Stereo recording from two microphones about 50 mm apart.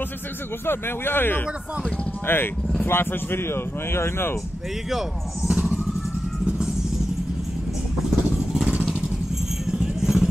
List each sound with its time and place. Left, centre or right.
0.7 s speech: left
5.5 s emergency vehicle: right
8.4 s vehicle: centre